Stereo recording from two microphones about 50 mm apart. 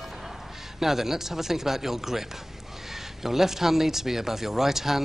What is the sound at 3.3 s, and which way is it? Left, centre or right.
Speech, centre.